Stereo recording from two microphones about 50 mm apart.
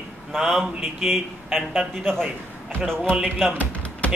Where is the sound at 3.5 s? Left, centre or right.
Left.